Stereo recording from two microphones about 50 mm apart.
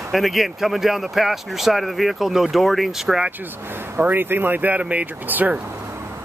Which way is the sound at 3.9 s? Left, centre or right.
Right.